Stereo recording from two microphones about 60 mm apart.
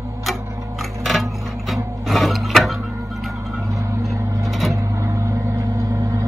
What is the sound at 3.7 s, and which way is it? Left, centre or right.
Vehicle, right.